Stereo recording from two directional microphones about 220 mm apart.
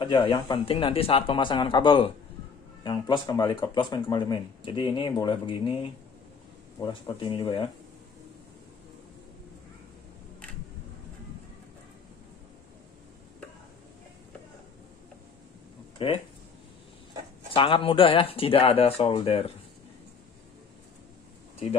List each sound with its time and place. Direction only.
0.0 s speech: 20° left (ahead or behind)
6.8 s speech: 20° left (ahead or behind)
17.5 s speech: 25° left (ahead or behind)